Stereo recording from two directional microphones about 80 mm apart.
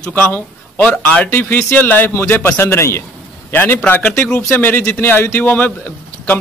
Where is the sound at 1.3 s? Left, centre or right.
Left.